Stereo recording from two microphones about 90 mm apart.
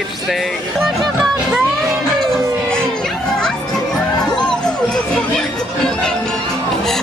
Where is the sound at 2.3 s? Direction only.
10° left (ahead or behind).